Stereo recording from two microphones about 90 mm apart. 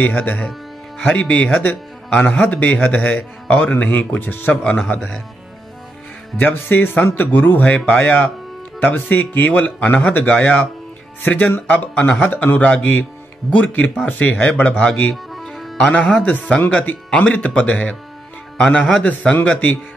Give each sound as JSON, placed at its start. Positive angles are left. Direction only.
{"t": 0.0, "sound": "speech", "side_deg": 15}
{"t": 6.3, "sound": "speech", "side_deg": 25}
{"t": 15.3, "sound": "music", "side_deg": 0}
{"t": 15.8, "sound": "speech", "side_deg": 10}